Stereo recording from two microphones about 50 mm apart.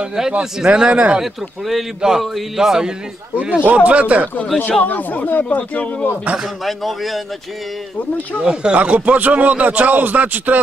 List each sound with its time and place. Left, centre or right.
0.3 s speech: centre
1.2 s speech: centre
3.6 s speech: right
4.6 s speech: left
6.6 s speech: centre
8.4 s a man's voice: right